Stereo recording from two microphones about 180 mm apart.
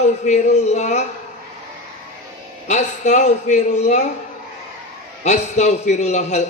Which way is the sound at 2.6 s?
40° left (ahead or behind).